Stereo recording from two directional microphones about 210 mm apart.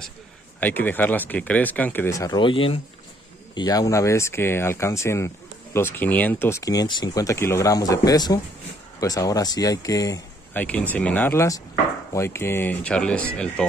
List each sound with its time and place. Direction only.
0.6 s speech: 10° left (ahead or behind)